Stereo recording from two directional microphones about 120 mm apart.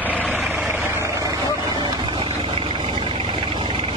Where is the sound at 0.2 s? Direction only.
15° right (ahead or behind).